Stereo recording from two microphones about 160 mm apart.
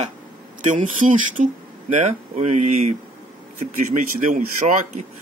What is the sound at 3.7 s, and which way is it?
Speech, 55° right (ahead or behind).